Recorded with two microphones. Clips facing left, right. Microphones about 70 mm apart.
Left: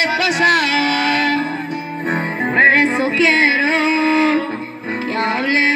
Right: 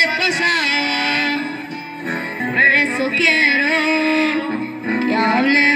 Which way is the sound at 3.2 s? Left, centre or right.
Centre.